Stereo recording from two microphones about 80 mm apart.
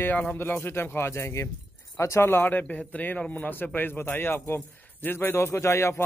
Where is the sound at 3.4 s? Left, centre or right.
Left.